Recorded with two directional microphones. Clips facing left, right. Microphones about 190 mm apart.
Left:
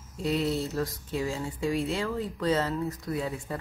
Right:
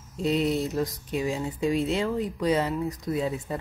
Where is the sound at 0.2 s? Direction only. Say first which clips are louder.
Right 3 dB; 20° right (ahead or behind).